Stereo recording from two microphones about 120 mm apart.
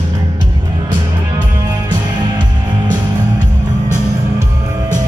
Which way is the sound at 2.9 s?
90° right.